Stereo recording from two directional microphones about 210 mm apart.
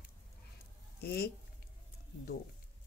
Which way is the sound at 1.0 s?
50° left (ahead or behind).